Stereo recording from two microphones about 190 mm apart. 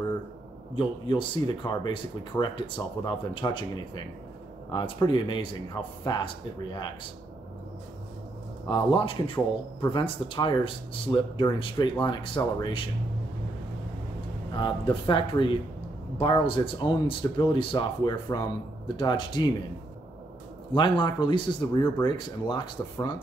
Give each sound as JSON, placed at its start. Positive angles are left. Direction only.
{"t": 0.7, "sound": "speech", "side_deg": 25}
{"t": 8.6, "sound": "speech", "side_deg": 25}
{"t": 14.5, "sound": "speech", "side_deg": 25}
{"t": 20.7, "sound": "speech", "side_deg": 25}